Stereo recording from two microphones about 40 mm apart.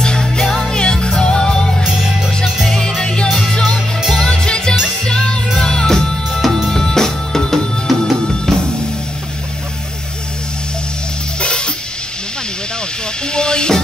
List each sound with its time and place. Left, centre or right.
0.0 s music: centre
1.8 s music: centre
2.6 s music: centre
11.4 s music: left
13.3 s music: left